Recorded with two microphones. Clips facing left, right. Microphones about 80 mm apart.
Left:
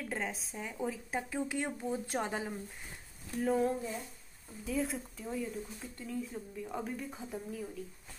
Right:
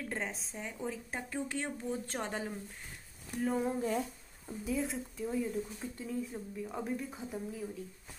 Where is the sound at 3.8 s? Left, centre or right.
Right.